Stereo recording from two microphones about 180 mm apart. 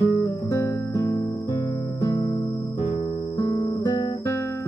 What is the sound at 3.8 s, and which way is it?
Guitar, 15° left (ahead or behind).